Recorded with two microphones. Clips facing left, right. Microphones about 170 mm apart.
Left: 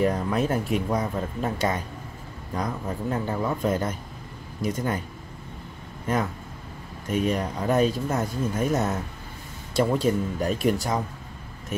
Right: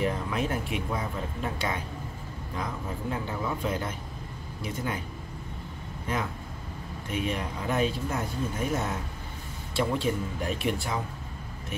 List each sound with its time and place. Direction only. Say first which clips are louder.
0.0 s speech: left 5 dB; 40° left (ahead or behind)
6.1 s speech: left 6 dB; 45° left (ahead or behind)